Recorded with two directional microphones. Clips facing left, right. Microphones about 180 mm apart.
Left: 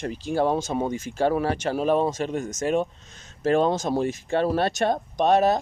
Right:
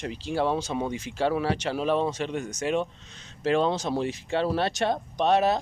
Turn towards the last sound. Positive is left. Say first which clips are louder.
# left 3 dB
turn(degrees=45)  # may be behind; listen again after turning